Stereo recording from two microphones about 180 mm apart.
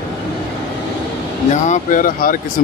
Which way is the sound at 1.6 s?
45° left (ahead or behind).